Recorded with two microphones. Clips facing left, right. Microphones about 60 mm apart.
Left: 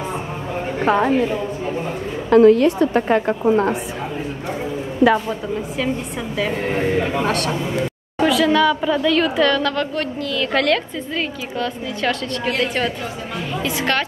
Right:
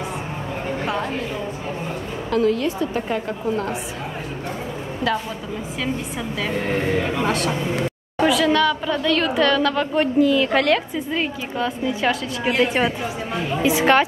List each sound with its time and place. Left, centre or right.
0.8 s a woman's voice: left
2.3 s a woman's voice: left
2.6 s a woman's voice: left
6.3 s speech: centre
7.2 s a woman's voice: centre